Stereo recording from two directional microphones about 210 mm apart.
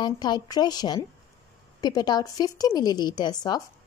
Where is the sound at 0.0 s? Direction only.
20° left (ahead or behind).